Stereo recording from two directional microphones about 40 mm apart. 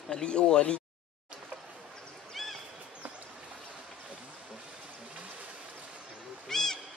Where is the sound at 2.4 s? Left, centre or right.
Centre.